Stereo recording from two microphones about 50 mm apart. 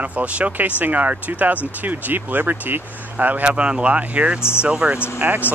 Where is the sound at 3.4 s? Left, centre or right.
Right.